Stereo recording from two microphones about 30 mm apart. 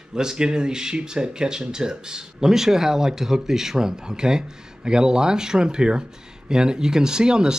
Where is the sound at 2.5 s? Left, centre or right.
Centre.